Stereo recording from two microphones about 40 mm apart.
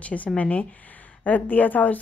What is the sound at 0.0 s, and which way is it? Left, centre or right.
Speech, left.